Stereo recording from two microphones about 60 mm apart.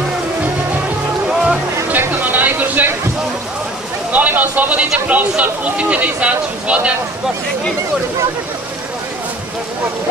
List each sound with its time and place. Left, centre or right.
1.3 s music: centre
1.9 s a sound: right
4.1 s speech: right